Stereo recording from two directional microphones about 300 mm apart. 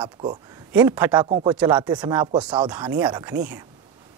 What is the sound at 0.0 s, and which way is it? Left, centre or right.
Speech, centre.